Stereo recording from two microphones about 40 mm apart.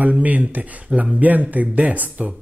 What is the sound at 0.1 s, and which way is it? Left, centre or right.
Speech, right.